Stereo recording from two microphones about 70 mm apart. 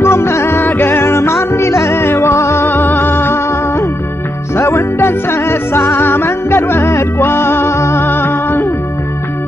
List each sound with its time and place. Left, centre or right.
0.0 s music: left